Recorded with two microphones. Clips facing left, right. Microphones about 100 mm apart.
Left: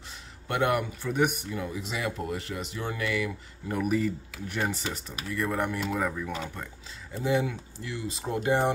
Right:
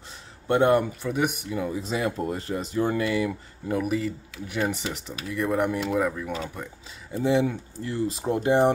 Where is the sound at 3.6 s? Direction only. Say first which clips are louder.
Right 1 dB; 5° right (ahead or behind).